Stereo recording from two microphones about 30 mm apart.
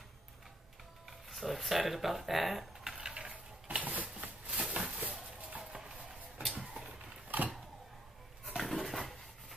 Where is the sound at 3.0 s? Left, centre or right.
Right.